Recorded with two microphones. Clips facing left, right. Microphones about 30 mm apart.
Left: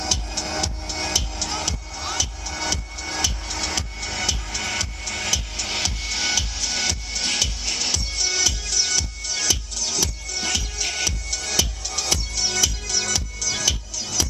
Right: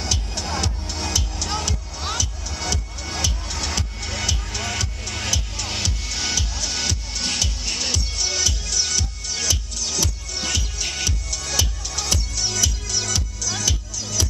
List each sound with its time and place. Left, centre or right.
0.0 s music: centre